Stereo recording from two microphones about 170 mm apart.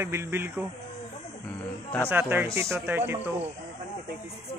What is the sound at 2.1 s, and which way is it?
Speech, 10° right (ahead or behind).